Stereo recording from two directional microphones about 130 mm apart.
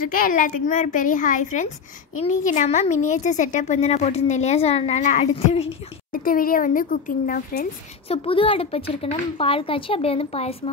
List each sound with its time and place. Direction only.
0.0 s a woman's voice: 90° left; by 5.7 s 50° left (ahead or behind)
6.1 s speech: 90° left
8.1 s a woman's voice: 45° left (ahead or behind)